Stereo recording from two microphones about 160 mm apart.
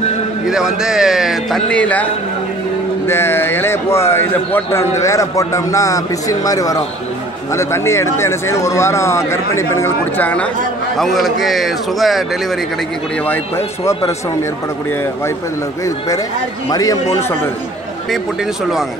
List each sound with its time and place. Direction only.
0.5 s a man's voice: 5° right (ahead or behind)
3.1 s a man's voice: 15° left (ahead or behind)
16.7 s a man's voice: 25° left (ahead or behind)